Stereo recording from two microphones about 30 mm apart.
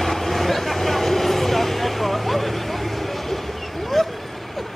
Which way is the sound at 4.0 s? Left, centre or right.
Centre.